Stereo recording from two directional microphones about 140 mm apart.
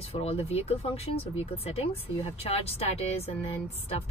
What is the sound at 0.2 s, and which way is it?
Speech, 45° left (ahead or behind).